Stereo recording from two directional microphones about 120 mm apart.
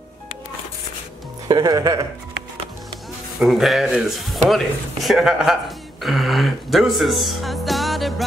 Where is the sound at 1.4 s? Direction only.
30° right (ahead or behind).